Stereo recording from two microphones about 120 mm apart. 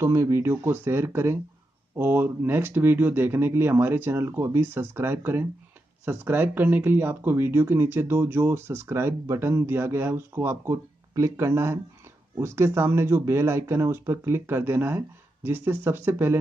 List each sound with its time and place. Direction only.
0.0 s speech: 25° right (ahead or behind)